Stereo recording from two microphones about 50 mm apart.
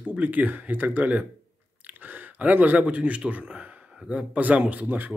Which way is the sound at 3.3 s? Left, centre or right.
Right.